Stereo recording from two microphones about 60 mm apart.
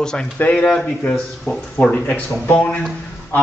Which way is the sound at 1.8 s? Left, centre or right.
Left.